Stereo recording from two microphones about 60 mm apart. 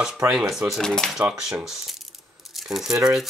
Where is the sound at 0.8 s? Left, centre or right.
Centre.